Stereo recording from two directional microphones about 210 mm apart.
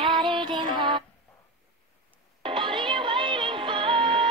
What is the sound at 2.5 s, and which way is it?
Music, 25° right (ahead or behind).